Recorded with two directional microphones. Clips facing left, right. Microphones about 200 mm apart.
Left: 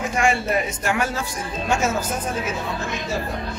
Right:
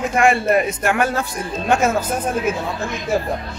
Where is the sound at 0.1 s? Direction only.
55° right (ahead or behind).